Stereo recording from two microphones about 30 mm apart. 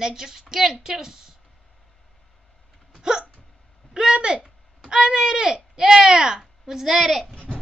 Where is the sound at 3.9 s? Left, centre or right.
Right.